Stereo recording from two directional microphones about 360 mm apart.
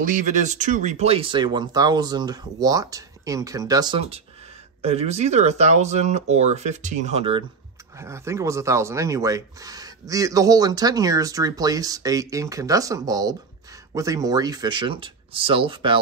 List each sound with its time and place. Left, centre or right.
0.0 s speech: right